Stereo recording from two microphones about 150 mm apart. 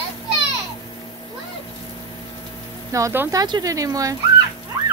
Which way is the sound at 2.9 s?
20° right (ahead or behind).